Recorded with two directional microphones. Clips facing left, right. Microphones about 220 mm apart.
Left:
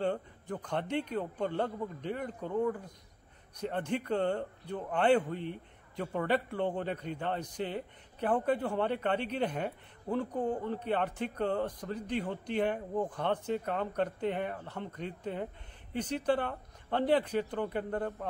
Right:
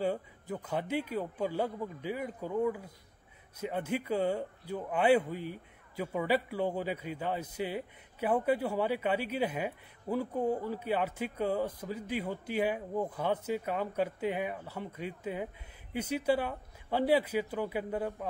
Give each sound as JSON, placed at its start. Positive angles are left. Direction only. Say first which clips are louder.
{"t": 0.0, "sound": "a man's voice", "louder": "even", "side_deg": -5}